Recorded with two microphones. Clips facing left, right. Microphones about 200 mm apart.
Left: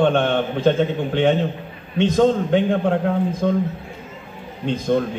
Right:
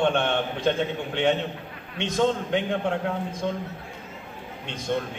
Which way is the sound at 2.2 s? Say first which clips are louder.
Left 6 dB; 35° left (ahead or behind).